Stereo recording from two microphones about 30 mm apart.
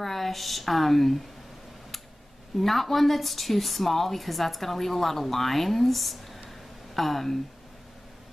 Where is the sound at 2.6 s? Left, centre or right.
Centre.